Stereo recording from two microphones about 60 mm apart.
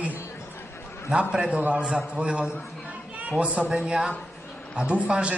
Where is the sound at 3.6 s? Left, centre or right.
Centre.